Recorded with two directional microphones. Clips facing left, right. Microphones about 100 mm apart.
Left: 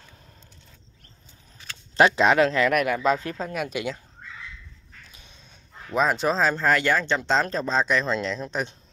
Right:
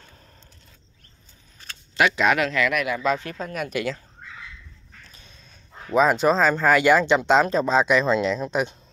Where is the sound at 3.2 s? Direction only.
25° left (ahead or behind).